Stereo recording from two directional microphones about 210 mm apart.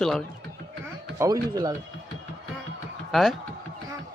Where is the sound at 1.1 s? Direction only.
15° right (ahead or behind).